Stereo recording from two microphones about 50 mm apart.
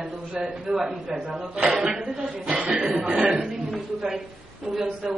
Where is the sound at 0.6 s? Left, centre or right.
Centre.